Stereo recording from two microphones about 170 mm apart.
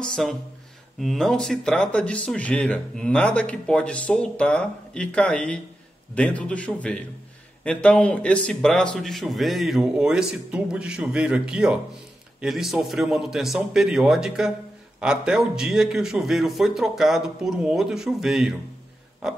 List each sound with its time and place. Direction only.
0.0 s a man's voice: 5° left (ahead or behind)